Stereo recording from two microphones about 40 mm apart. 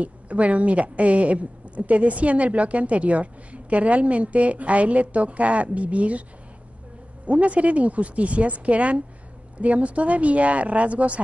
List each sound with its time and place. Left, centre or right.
0.0 s a woman's voice: right
7.2 s a woman's voice: right